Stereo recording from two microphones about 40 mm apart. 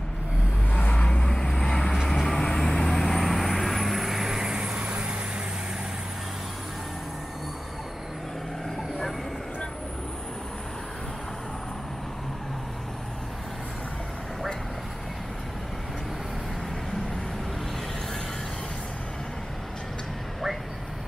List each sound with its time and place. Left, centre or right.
0.7 s vehicle: left
1.3 s vehicle: centre; by 5.1 s right